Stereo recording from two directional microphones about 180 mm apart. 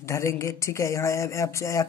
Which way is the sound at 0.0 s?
15° left (ahead or behind).